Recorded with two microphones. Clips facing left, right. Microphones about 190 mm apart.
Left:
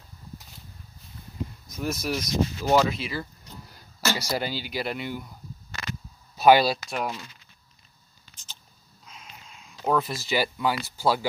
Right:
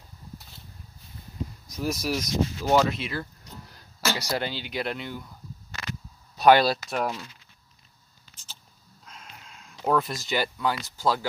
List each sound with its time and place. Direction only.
1.8 s speech: centre (ahead or behind)
6.3 s speech: 5° left (ahead or behind)
9.0 s a sound: 5° left (ahead or behind)
9.8 s speech: centre (ahead or behind)